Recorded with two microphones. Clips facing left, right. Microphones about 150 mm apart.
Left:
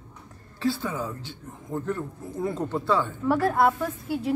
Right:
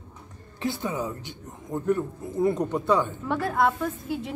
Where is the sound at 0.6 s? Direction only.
20° right (ahead or behind).